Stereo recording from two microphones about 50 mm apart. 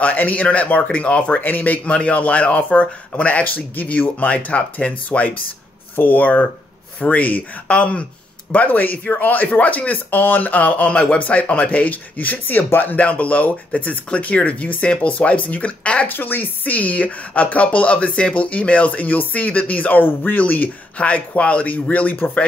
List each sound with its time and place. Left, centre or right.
0.0 s speech: left
1.4 s speech: left
1.9 s speech: left
8.5 s speech: left
16.1 s speech: left